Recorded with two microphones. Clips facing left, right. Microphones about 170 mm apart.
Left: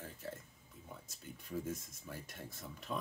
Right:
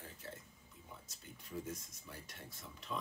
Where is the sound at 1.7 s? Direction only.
50° left (ahead or behind).